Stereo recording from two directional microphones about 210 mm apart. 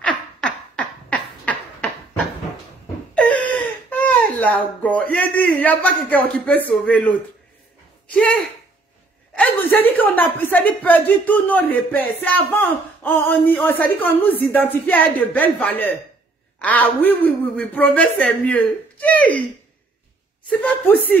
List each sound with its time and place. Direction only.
0.4 s a sound: 5° left (ahead or behind)
4.1 s speech: 5° left (ahead or behind)
8.1 s speech: 5° left (ahead or behind)
20.4 s speech: 5° left (ahead or behind)